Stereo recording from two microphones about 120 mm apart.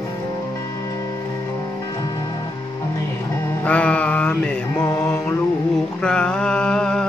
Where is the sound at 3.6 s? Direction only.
10° left (ahead or behind).